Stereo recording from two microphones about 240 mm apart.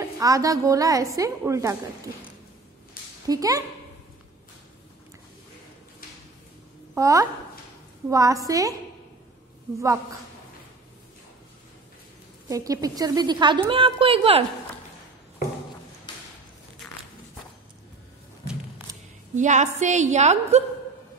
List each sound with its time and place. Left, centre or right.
0.2 s a woman's voice: centre
3.3 s a woman's voice: centre
7.0 s a woman's voice: centre
12.4 s a woman's voice: centre
18.5 s a sound: centre
19.3 s a woman's voice: right